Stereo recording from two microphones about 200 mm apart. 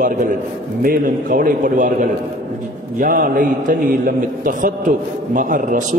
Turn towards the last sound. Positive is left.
turn(degrees=-40)  # may be behind; listen again after turning